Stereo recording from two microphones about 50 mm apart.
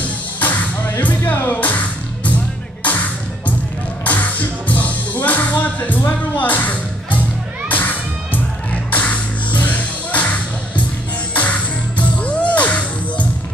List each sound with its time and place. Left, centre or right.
0.4 s music: left
12.0 s music: left